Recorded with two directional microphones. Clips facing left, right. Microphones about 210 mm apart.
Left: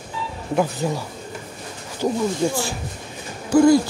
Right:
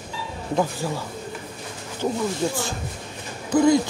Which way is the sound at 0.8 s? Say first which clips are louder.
Left 4 dB; 20° left (ahead or behind).